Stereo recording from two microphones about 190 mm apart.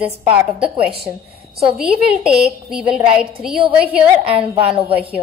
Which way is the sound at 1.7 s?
5° right (ahead or behind).